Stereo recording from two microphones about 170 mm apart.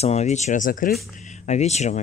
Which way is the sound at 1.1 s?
45° left (ahead or behind).